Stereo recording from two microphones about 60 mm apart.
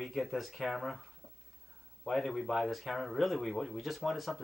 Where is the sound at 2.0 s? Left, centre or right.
Centre.